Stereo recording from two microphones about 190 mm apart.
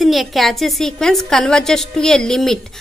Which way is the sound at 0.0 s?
Centre (ahead or behind).